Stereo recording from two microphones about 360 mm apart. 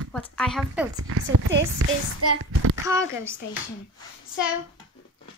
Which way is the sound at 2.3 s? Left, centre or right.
Right.